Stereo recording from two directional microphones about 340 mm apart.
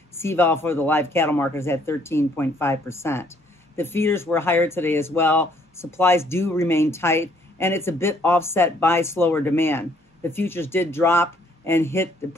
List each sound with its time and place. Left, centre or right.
0.1 s speech: centre